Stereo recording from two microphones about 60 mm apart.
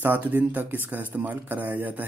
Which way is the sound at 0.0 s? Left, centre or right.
Right.